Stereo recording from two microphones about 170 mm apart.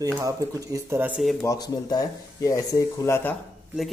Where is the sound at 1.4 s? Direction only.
20° left (ahead or behind).